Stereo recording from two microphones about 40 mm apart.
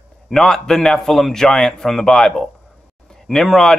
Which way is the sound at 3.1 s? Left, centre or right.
Centre.